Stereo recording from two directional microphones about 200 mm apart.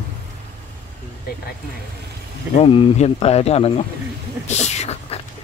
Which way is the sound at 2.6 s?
30° left (ahead or behind).